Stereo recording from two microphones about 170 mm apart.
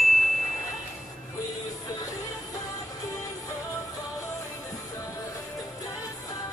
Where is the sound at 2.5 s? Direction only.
20° left (ahead or behind).